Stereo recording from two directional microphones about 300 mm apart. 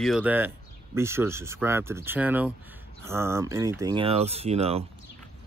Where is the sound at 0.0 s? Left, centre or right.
Centre.